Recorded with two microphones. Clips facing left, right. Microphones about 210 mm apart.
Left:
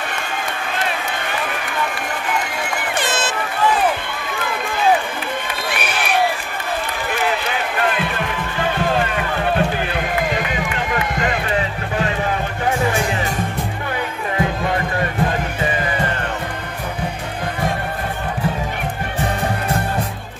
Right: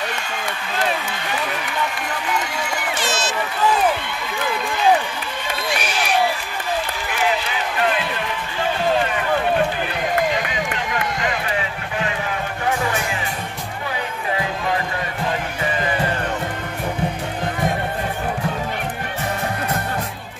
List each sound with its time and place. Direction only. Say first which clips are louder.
3.0 s run: left 3 dB; 55° left (ahead or behind)
5.7 s crowd: even; 55° left (ahead or behind)